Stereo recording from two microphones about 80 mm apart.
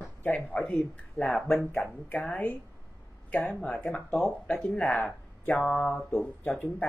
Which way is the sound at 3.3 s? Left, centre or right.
Centre.